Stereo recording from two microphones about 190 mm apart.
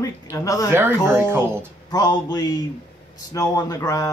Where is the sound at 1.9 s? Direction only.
20° left (ahead or behind).